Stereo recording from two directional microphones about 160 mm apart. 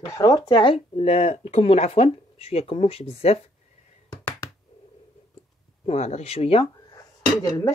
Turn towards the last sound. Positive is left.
turn(degrees=20)  # may be behind; listen again after turning